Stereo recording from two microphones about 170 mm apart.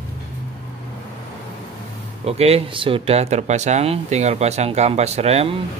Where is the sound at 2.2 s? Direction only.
35° right (ahead or behind).